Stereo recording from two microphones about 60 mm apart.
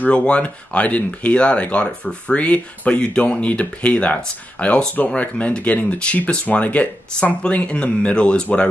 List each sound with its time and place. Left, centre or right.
0.0 s speech: centre